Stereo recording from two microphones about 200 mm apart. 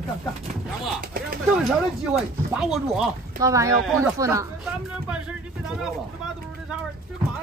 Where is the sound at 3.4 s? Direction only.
15° right (ahead or behind).